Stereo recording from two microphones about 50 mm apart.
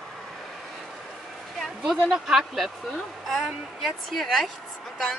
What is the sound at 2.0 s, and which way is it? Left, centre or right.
Speech, centre.